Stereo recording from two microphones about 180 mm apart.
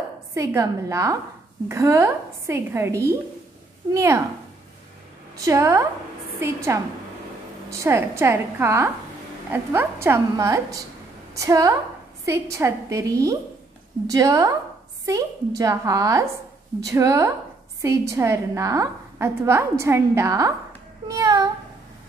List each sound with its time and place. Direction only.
0.3 s a woman's voice: 15° right (ahead or behind)
5.4 s a woman's voice: 15° right (ahead or behind)
21.1 s a sound: 20° right (ahead or behind)